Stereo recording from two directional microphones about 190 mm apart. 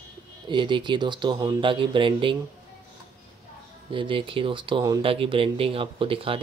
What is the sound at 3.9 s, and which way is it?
Speech, 25° right (ahead or behind).